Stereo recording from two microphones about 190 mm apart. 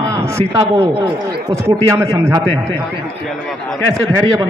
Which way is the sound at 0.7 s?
30° right (ahead or behind).